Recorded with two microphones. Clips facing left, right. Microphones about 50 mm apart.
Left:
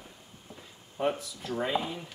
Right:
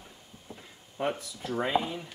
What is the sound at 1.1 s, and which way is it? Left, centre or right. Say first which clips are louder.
Speech: left 2 dB; centre.